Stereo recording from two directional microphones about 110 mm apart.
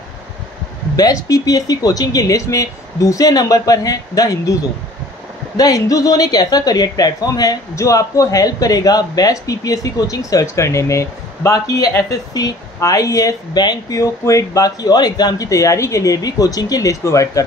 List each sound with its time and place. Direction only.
0.9 s a woman's voice: 35° left (ahead or behind)
5.6 s a woman's voice: 35° left (ahead or behind)